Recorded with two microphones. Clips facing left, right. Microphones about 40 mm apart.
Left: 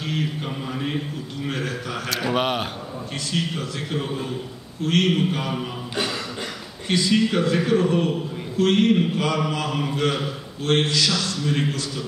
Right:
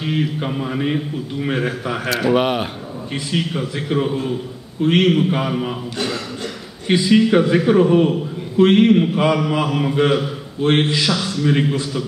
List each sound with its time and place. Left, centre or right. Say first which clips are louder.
0.0 s a man's voice: right 6 dB; centre
2.0 s speech: right 6 dB; centre
3.3 s a man's voice: right 4 dB; centre
6.9 s a man's voice: right 6 dB; centre